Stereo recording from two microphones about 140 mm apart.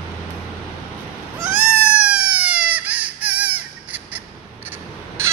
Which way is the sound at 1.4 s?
5° right (ahead or behind).